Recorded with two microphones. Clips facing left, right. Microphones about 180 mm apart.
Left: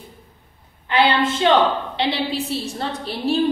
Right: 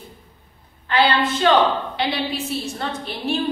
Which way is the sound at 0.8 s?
20° left (ahead or behind).